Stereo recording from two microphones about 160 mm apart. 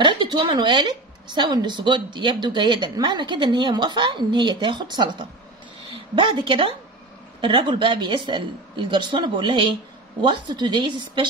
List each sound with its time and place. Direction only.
0.0 s a woman's voice: 30° right (ahead or behind)